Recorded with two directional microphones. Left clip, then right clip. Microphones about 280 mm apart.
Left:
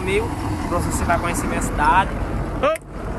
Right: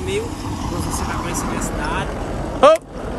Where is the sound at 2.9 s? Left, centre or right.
Right.